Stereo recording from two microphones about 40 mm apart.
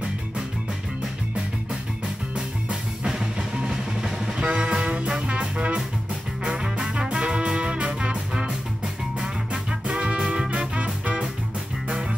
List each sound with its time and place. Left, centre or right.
2.3 s music: right
6.4 s music: centre
8.5 s music: centre
9.5 s music: right